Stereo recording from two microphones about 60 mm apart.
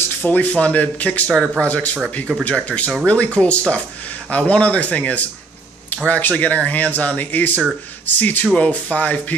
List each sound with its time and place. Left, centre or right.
0.2 s speech: left